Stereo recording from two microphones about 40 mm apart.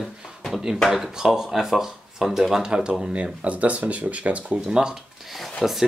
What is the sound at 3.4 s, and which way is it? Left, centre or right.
Speech, right.